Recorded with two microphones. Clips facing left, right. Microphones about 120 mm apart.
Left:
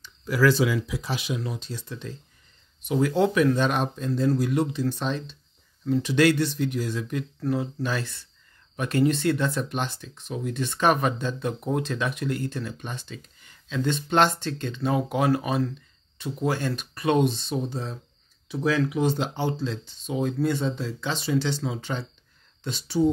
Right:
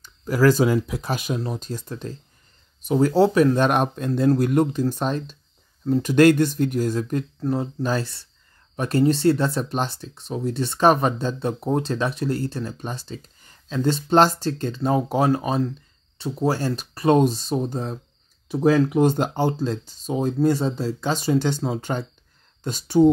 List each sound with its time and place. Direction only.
0.0 s speech: 45° right (ahead or behind)
3.5 s speech: 55° right (ahead or behind)
4.3 s speech: 50° right (ahead or behind)